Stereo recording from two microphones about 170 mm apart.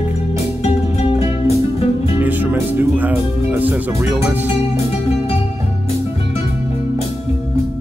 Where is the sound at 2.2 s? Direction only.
10° right (ahead or behind).